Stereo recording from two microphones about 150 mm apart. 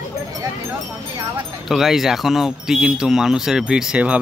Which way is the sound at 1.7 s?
Centre (ahead or behind).